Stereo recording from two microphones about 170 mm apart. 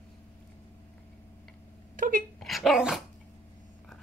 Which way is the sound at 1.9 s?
55° right (ahead or behind).